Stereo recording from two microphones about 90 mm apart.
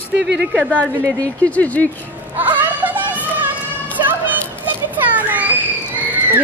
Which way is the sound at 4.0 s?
20° right (ahead or behind).